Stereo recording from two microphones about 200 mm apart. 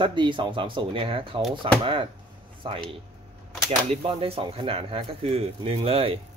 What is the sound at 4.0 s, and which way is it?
A man's voice, 30° right (ahead or behind).